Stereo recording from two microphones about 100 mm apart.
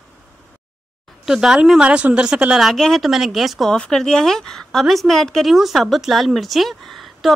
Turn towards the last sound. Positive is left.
turn(degrees=0)  # may be behind; listen again after turning